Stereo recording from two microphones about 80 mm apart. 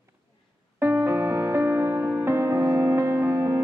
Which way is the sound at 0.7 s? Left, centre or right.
Right.